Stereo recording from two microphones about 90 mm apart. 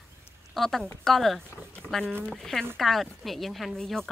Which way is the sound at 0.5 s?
Centre (ahead or behind).